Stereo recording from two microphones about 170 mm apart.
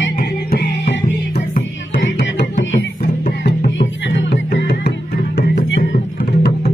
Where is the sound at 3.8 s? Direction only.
90° left.